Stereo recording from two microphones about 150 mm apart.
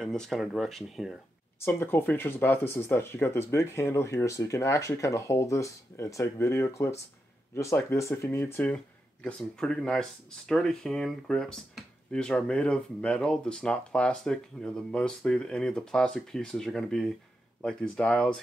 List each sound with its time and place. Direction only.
0.0 s speech: 5° left (ahead or behind)
1.6 s speech: 15° left (ahead or behind)